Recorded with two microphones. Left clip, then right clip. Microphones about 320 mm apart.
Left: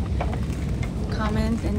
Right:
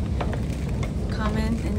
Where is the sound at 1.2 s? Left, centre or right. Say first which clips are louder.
Left 1 dB; centre.